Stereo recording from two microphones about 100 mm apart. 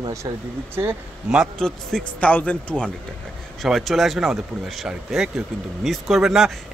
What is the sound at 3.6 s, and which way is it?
A man's voice, centre (ahead or behind).